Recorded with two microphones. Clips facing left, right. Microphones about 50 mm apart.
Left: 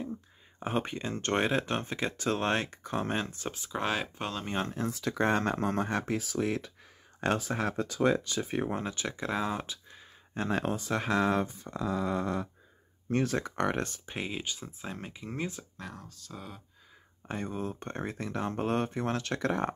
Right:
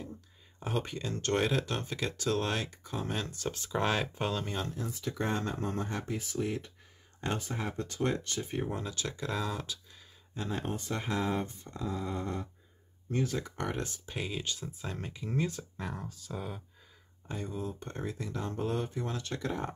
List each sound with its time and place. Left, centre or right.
0.6 s speech: left
3.2 s speech: left
3.5 s speech: centre
4.5 s speech: left
4.8 s speech: left
8.6 s speech: left
8.9 s speech: left
10.3 s speech: left
13.1 s speech: left
14.0 s speech: left
14.8 s speech: centre
16.1 s speech: centre
17.3 s speech: left